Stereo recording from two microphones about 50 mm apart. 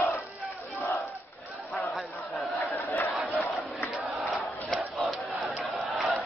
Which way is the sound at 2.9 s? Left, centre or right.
Left.